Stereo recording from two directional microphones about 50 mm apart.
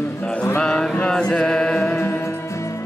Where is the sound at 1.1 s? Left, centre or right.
Centre.